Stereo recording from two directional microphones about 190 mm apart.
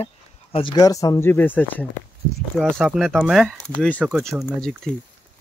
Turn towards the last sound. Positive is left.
turn(degrees=0)  # may be behind; listen again after turning